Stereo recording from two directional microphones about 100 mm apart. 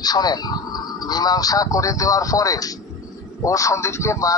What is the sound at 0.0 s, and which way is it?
Speech, 40° left (ahead or behind).